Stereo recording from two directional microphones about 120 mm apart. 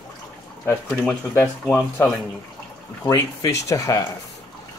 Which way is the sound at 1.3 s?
15° left (ahead or behind).